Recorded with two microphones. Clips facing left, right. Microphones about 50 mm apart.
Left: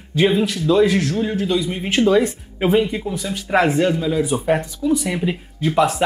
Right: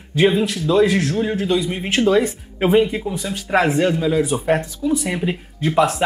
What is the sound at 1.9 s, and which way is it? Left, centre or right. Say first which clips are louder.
A man's voice: left 1 dB; centre.